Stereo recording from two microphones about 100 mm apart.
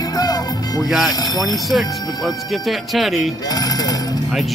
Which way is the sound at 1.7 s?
Centre (ahead or behind).